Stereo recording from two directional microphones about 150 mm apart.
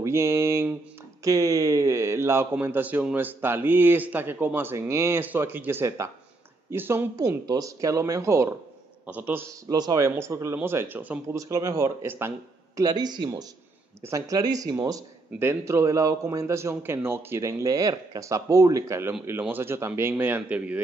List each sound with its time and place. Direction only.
0.0 s a man's voice: 20° right (ahead or behind)